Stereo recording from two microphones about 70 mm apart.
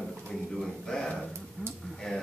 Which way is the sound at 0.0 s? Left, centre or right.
Centre.